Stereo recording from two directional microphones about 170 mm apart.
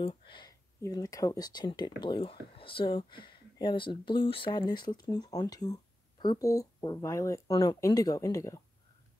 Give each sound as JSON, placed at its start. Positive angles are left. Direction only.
{"t": 0.0, "sound": "speech", "side_deg": 30}